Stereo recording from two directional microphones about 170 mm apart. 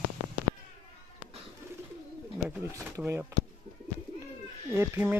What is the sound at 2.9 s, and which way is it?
Speech, 15° right (ahead or behind).